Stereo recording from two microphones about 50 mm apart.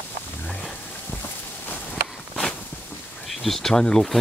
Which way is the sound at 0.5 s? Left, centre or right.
Left.